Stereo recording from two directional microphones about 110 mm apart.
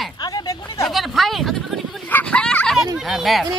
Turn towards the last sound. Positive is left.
turn(degrees=0)  # may be behind; listen again after turning